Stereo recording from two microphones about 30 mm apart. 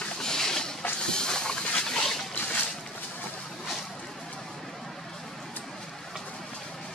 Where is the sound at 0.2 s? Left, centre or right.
Centre.